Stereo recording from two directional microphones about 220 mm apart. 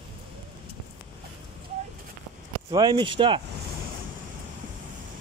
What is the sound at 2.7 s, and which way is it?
Speech, 20° right (ahead or behind).